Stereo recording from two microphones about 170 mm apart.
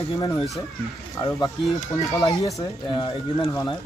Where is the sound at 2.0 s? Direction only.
20° left (ahead or behind).